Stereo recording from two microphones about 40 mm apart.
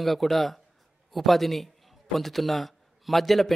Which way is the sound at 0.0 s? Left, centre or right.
Centre.